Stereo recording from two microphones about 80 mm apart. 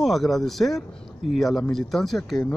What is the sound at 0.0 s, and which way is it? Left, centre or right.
Speech, centre.